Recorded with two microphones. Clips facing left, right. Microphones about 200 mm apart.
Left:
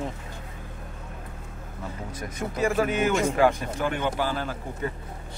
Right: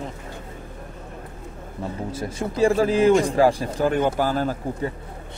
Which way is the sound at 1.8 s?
30° right (ahead or behind).